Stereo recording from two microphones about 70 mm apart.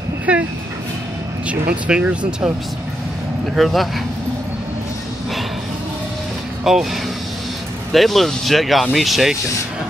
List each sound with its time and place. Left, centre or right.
0.3 s dog: centre
1.5 s speech: centre
3.5 s speech: centre
6.6 s speech: centre